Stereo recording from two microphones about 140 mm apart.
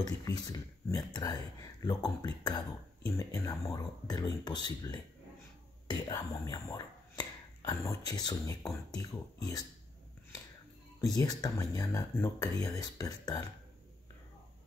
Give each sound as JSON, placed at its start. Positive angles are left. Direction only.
{"t": 0.0, "sound": "speech", "side_deg": 25}
{"t": 11.0, "sound": "speech", "side_deg": 25}